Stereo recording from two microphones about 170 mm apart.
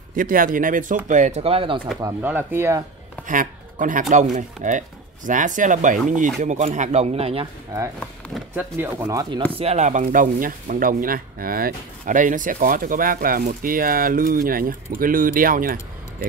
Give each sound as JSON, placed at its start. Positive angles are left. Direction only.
{"t": 0.1, "sound": "speech", "side_deg": -55}
{"t": 2.2, "sound": "speech", "side_deg": -10}
{"t": 3.3, "sound": "speech", "side_deg": -50}
{"t": 7.7, "sound": "speech", "side_deg": -20}
{"t": 9.5, "sound": "speech", "side_deg": -35}